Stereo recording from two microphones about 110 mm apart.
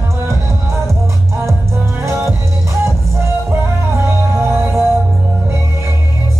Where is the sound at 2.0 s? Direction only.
25° right (ahead or behind).